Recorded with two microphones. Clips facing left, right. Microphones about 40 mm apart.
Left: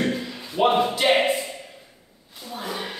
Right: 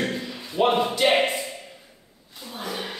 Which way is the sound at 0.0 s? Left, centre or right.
Centre.